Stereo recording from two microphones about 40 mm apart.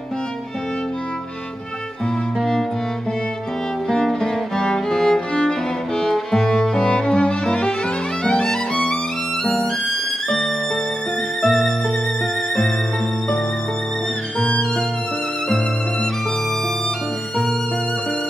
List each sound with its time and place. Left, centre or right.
3.9 s music: centre
11.4 s music: centre